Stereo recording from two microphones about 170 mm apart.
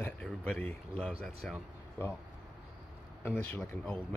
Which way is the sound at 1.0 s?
Centre (ahead or behind).